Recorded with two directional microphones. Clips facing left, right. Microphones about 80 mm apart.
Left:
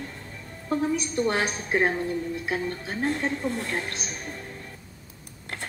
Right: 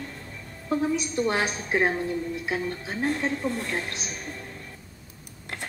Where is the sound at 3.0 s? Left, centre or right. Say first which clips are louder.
Even; left.